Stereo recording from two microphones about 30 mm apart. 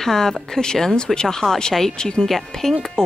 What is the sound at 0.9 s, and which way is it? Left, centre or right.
Speech, left.